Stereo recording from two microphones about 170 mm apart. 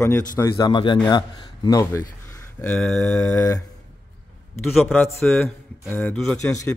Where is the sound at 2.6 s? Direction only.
5° left (ahead or behind).